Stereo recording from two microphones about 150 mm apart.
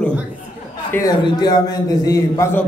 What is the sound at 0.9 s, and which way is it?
A man's voice, 25° left (ahead or behind).